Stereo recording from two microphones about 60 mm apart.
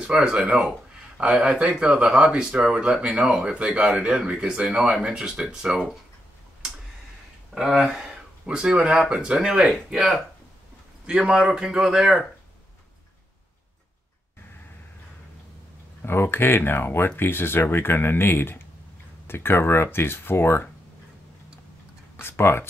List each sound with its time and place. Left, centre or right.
0.0 s speech: centre
7.5 s speech: centre
8.5 s speech: centre
11.1 s speech: centre
16.0 s speech: left
22.1 s a sound: left